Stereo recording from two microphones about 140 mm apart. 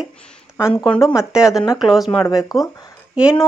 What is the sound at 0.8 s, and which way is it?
Speech, centre (ahead or behind).